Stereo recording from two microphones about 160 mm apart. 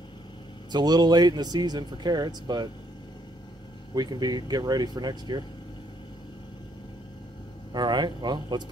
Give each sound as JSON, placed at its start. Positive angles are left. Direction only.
{"t": 0.7, "sound": "speech", "side_deg": -25}
{"t": 3.9, "sound": "speech", "side_deg": -25}
{"t": 7.7, "sound": "speech", "side_deg": -25}